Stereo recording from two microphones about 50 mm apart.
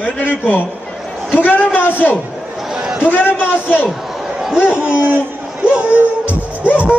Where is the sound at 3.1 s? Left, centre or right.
Left.